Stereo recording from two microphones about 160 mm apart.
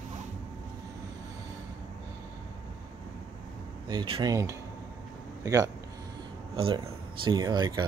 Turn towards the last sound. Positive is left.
turn(degrees=-25)  # may be behind; listen again after turning